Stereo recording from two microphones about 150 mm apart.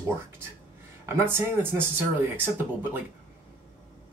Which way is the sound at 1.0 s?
15° right (ahead or behind).